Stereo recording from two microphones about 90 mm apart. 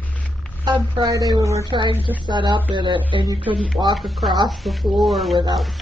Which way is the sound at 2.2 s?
60° right (ahead or behind).